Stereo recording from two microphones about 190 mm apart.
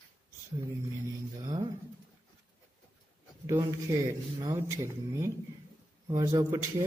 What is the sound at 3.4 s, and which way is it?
Speech, 15° right (ahead or behind).